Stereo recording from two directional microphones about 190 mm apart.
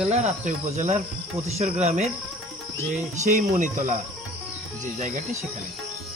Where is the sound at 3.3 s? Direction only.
40° right (ahead or behind).